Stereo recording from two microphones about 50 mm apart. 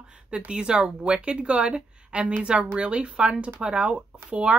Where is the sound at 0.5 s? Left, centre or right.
Centre.